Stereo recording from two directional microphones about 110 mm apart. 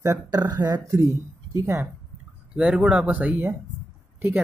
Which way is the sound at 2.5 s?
10° right (ahead or behind).